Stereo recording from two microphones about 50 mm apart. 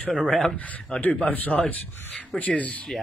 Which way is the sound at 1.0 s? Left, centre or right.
Left.